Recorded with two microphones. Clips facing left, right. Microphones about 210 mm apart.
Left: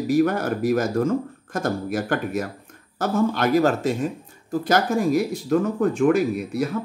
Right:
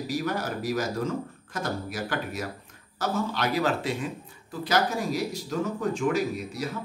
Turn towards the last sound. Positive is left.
turn(degrees=55)  # may be behind; listen again after turning